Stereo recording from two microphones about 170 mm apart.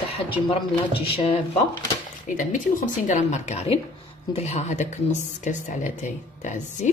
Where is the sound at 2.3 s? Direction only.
50° left (ahead or behind).